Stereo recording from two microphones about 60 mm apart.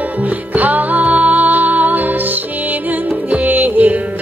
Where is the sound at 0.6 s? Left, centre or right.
Right.